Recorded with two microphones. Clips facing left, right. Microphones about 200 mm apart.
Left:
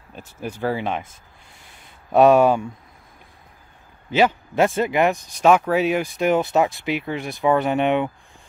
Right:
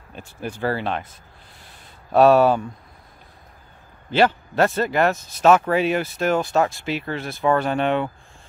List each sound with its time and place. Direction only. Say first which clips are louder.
0.4 s speech: even; 5° left (ahead or behind)
2.1 s speech: even; 15° left (ahead or behind)
4.1 s speech: even; 10° left (ahead or behind)